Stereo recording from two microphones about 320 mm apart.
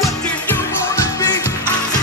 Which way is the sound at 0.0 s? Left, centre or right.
Centre.